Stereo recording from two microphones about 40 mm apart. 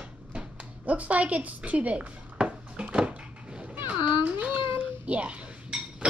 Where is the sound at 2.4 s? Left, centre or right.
Right.